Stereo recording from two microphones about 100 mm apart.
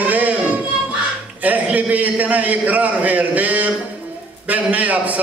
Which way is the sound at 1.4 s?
15° right (ahead or behind).